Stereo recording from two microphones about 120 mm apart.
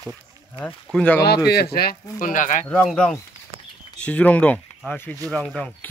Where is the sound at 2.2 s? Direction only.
90° left.